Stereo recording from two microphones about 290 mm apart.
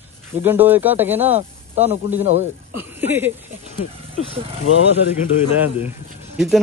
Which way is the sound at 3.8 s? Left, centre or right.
Left.